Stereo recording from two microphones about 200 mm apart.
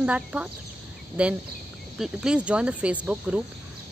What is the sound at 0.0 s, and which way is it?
Speech, 5° right (ahead or behind).